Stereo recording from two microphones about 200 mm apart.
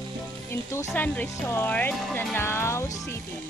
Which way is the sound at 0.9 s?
10° left (ahead or behind).